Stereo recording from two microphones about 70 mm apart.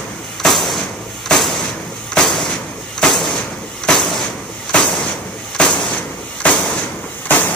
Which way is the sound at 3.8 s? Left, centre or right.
Centre.